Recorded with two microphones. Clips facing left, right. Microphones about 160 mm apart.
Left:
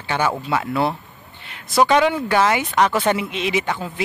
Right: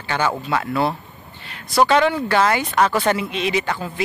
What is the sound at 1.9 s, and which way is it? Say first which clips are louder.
Speech: even; 15° left (ahead or behind).